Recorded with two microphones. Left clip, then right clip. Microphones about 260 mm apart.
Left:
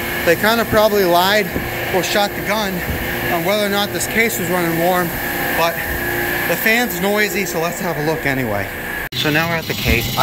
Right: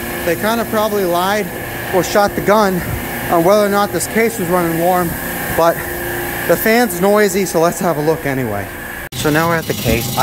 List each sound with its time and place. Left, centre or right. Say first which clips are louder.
0.3 s speech: left 2 dB; centre
6.5 s speech: right 6 dB; centre